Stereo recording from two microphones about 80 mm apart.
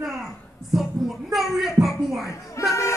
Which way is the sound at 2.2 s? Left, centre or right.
Left.